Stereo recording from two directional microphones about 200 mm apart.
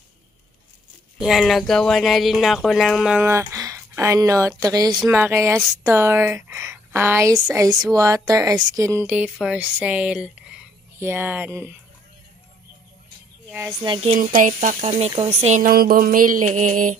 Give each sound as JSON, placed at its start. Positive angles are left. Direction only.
{"t": 1.2, "sound": "speech", "side_deg": 0}
{"t": 13.5, "sound": "speech", "side_deg": -10}
{"t": 13.8, "sound": "speech", "side_deg": -25}
{"t": 14.1, "sound": "speech", "side_deg": -40}
{"t": 14.9, "sound": "speech", "side_deg": -25}